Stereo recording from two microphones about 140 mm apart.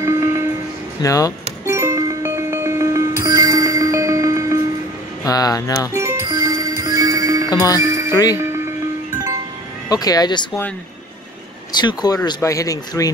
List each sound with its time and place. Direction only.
0.0 s music: 20° right (ahead or behind)
1.0 s speech: 25° left (ahead or behind)
1.7 s music: 20° right (ahead or behind)
5.2 s speech: 25° left (ahead or behind)
5.9 s music: 20° right (ahead or behind)
7.4 s music: 25° left (ahead or behind)
7.8 s music: 25° right (ahead or behind)
9.8 s speech: 25° left (ahead or behind)
11.8 s speech: 30° left (ahead or behind)